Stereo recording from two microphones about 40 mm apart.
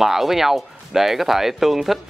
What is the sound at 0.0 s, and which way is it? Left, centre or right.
Speech, centre.